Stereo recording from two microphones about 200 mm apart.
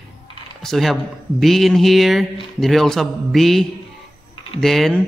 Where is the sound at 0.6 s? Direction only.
Centre (ahead or behind).